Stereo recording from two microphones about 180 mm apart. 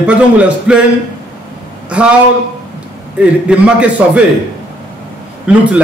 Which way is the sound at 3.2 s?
5° right (ahead or behind).